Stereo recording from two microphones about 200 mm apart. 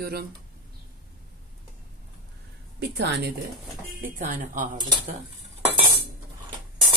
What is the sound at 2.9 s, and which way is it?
Speech, 55° right (ahead or behind).